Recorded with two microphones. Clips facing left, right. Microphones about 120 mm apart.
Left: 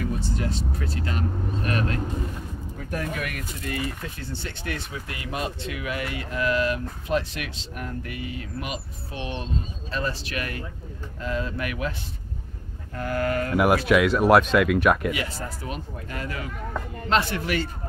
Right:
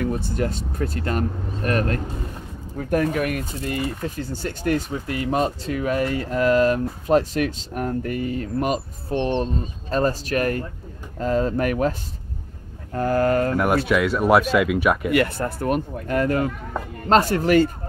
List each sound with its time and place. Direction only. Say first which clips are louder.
0.0 s speech: right 5 dB; 55° right (ahead or behind)
12.9 s speech: right 6 dB; 35° right (ahead or behind)
13.8 s speech: even; centre (ahead or behind)
15.1 s speech: right 11 dB; 60° right (ahead or behind); by 17.6 s 45° right (ahead or behind)